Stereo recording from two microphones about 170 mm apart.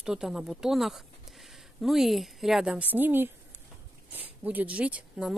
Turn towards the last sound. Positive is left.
turn(degrees=-5)  # may be behind; listen again after turning